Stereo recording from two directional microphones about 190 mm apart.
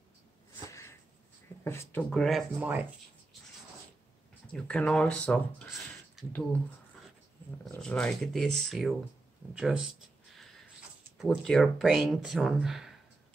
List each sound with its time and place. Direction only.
0.7 s a sound: 15° left (ahead or behind)
1.6 s speech: 15° left (ahead or behind)
2.0 s speech: centre (ahead or behind)
2.6 s speech: 10° right (ahead or behind)
4.5 s speech: 5° left (ahead or behind)
7.6 s speech: 5° left (ahead or behind)
9.5 s a sound: 5° right (ahead or behind)
11.1 s speech: centre (ahead or behind)